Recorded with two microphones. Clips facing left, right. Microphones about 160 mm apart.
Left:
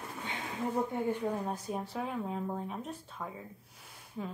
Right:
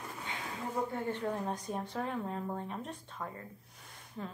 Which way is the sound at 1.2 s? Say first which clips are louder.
Left 1 dB; 5° left (ahead or behind).